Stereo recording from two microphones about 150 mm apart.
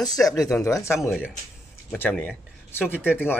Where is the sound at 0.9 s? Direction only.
5° right (ahead or behind).